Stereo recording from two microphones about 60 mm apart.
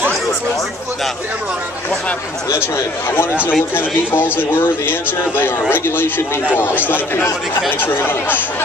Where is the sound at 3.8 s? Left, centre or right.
Left.